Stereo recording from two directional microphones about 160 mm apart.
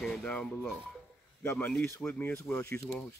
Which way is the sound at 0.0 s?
5° left (ahead or behind).